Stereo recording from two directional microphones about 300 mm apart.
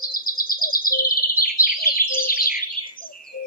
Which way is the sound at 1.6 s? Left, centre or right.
Left.